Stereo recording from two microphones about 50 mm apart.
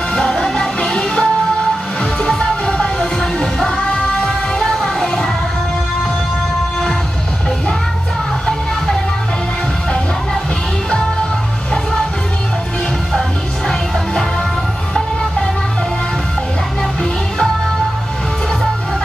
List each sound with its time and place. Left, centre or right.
0.1 s music: centre
3.7 s music: centre
15.0 s music: centre